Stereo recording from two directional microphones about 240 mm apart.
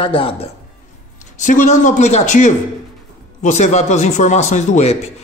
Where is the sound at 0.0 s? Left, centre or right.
Left.